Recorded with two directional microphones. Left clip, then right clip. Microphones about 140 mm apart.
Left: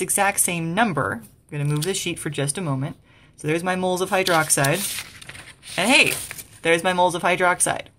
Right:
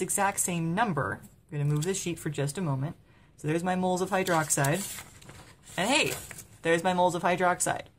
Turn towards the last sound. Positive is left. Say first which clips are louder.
# left 7 dB
turn(degrees=15)  # may be behind; listen again after turning